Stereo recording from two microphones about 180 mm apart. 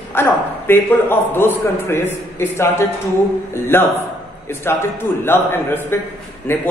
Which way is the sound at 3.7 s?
15° left (ahead or behind).